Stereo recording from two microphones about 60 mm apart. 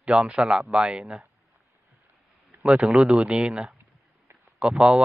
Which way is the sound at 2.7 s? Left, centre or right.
Right.